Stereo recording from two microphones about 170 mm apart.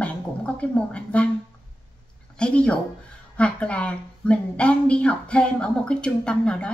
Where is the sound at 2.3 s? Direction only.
5° left (ahead or behind).